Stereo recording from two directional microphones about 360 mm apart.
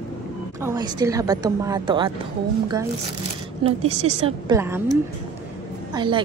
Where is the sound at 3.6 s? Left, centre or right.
Centre.